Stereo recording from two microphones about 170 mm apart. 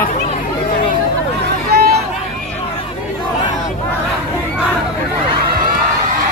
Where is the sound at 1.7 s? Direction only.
70° right (ahead or behind).